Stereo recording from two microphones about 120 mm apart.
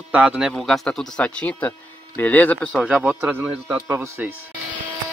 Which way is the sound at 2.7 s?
10° right (ahead or behind).